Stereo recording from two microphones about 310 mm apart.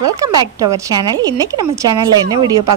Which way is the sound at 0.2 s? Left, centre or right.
Centre.